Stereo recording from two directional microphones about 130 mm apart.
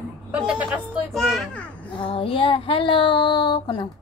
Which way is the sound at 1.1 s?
Centre (ahead or behind).